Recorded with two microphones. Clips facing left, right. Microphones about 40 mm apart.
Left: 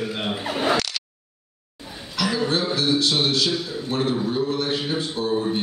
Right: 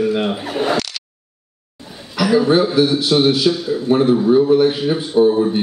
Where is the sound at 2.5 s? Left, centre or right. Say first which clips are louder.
Right 8 dB; centre.